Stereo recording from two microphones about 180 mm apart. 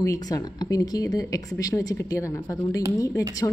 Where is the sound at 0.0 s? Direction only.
20° left (ahead or behind).